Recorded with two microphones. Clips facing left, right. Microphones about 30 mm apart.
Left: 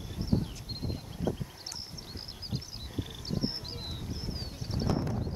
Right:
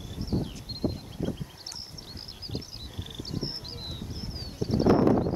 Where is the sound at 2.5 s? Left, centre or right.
Centre.